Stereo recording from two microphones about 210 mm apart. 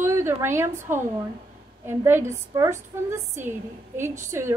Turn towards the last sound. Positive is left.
turn(degrees=-10)  # may be behind; listen again after turning